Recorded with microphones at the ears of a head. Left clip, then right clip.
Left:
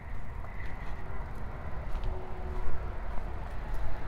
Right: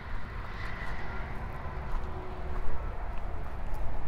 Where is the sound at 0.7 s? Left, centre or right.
Right.